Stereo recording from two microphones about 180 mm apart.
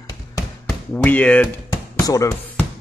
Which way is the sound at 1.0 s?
10° left (ahead or behind).